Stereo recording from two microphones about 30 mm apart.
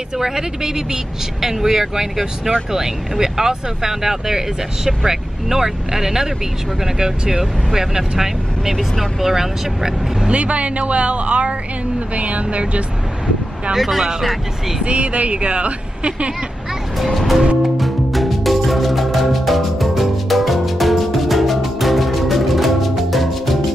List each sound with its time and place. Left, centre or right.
0.2 s speech: right
10.3 s speech: right
13.7 s speech: centre
14.9 s speech: right
17.1 s music: centre